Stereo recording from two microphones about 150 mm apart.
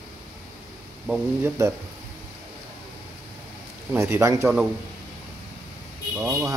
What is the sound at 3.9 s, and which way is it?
Speech, 20° right (ahead or behind).